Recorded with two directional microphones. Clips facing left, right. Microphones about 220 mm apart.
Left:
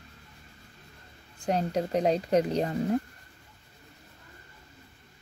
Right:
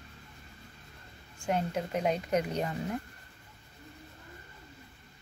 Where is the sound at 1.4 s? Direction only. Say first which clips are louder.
Left 4 dB; 35° left (ahead or behind).